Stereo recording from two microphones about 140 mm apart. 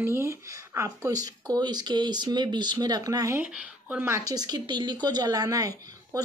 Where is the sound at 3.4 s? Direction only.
10° right (ahead or behind); by 6.2 s 25° right (ahead or behind).